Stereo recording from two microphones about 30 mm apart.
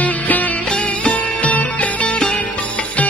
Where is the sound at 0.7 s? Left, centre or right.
Left.